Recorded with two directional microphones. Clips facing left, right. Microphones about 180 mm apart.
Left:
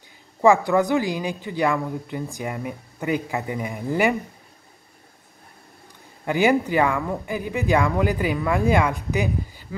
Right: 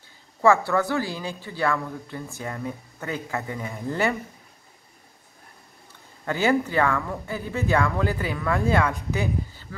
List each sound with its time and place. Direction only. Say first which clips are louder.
0.4 s speech: left 3 dB; 15° left (ahead or behind)
6.2 s speech: left 3 dB; 15° left (ahead or behind)